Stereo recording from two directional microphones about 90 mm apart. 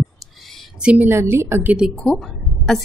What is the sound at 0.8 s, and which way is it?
Speech, 10° right (ahead or behind).